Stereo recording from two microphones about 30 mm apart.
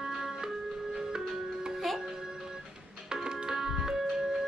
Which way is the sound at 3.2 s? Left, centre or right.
Right.